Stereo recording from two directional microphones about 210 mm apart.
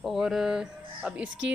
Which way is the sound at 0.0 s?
Centre (ahead or behind).